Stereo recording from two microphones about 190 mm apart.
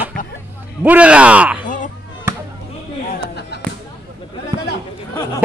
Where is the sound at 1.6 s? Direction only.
45° left (ahead or behind).